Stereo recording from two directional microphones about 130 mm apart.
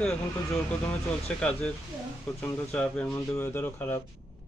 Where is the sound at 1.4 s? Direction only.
10° left (ahead or behind).